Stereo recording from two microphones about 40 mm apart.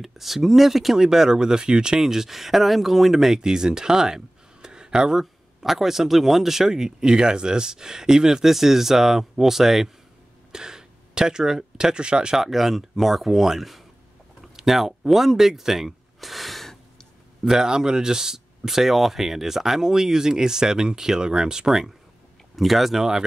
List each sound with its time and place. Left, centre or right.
0.0 s speech: centre
5.2 s speech: centre; by 12.4 s right
12.4 s speech: centre
17.5 s speech: centre